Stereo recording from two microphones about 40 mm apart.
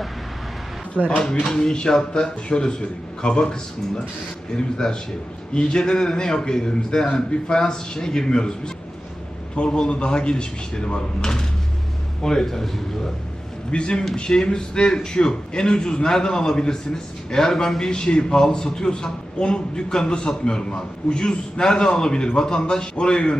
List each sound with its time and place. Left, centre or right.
0.9 s speech: left
1.4 s a man's voice: centre
4.6 s a man's voice: centre
13.7 s a man's voice: left